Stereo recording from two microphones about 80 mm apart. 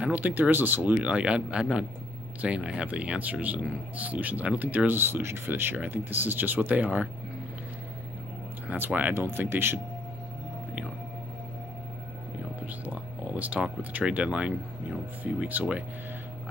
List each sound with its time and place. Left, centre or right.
0.0 s speech: right
0.9 s speech: centre
8.6 s speech: right
12.6 s speech: centre